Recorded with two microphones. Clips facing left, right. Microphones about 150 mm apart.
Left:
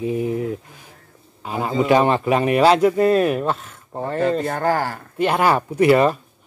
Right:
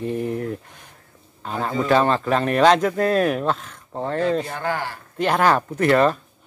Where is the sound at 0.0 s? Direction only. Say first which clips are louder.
Left 3 dB; 5° left (ahead or behind).